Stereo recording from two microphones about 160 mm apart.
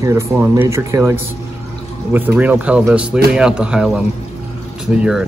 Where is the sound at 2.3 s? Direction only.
10° right (ahead or behind).